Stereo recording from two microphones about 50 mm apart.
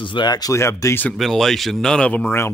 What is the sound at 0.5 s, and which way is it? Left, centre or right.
Speech, left.